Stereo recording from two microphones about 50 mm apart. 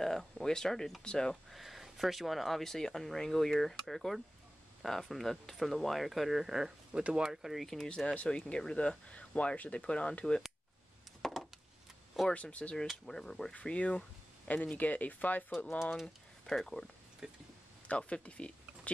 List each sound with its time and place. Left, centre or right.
0.0 s speech: centre
1.5 s speech: centre
6.9 s speech: right
7.2 s speech: centre
8.1 s speech: left
11.2 s a sound: centre
12.3 s speech: left
12.9 s speech: centre
13.6 s speech: left
16.4 s speech: centre
17.2 s speech: centre
17.8 s speech: left